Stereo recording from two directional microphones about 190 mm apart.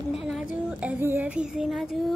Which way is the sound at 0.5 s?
10° right (ahead or behind).